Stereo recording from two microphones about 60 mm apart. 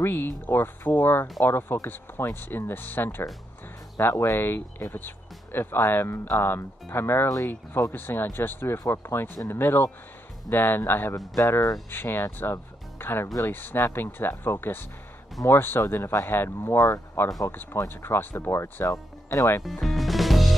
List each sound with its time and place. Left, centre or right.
0.0 s speech: left
8.7 s speech: left
9.0 s speech: left
11.1 s speech: left
11.9 s speech: left
16.7 s speech: left
17.7 s speech: left
19.6 s music: centre